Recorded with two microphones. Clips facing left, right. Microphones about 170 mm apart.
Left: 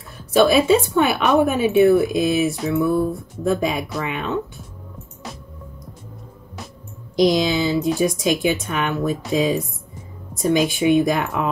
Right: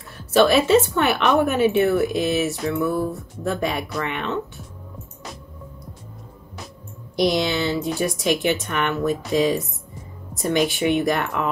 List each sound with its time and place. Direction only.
0.3 s a woman's voice: 10° left (ahead or behind)
7.2 s a woman's voice: 15° left (ahead or behind)